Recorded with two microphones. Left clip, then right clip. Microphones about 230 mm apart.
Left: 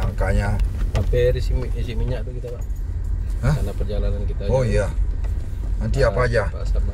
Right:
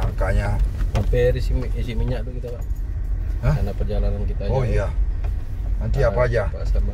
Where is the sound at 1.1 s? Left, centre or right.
Right.